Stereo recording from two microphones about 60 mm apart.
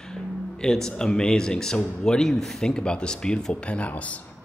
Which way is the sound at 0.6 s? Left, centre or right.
Centre.